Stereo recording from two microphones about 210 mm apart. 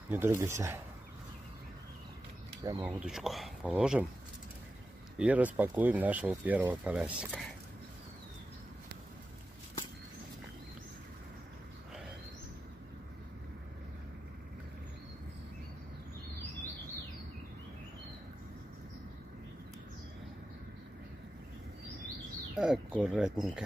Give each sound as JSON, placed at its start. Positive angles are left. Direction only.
{"t": 0.1, "sound": "speech", "side_deg": -10}
{"t": 2.6, "sound": "speech", "side_deg": -15}
{"t": 2.9, "sound": "speech", "side_deg": 0}
{"t": 5.2, "sound": "speech", "side_deg": -5}
{"t": 22.6, "sound": "speech", "side_deg": -5}